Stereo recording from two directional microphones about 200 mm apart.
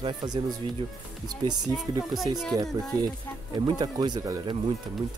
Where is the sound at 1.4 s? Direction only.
20° right (ahead or behind).